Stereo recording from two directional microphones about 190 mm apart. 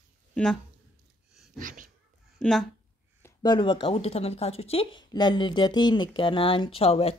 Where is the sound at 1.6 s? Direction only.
45° right (ahead or behind).